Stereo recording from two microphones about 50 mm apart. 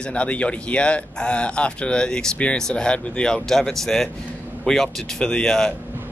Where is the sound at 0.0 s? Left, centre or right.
Left.